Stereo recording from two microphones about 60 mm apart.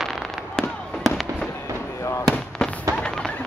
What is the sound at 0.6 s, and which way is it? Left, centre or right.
Fireworks, centre.